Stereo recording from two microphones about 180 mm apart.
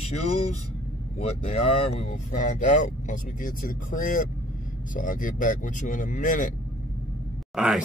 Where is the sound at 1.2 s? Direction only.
35° left (ahead or behind).